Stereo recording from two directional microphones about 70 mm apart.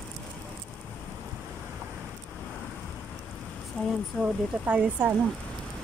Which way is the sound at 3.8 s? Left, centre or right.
Centre.